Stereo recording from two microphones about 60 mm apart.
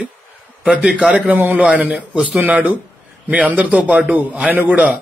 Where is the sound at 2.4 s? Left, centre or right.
Right.